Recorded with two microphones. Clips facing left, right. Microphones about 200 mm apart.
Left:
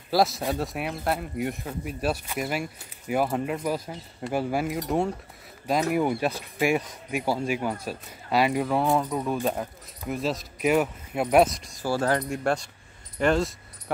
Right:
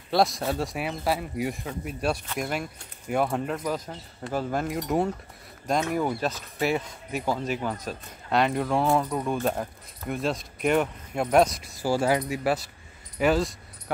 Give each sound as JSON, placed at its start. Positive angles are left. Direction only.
{"t": 0.1, "sound": "speech", "side_deg": 5}
{"t": 11.8, "sound": "speech", "side_deg": -10}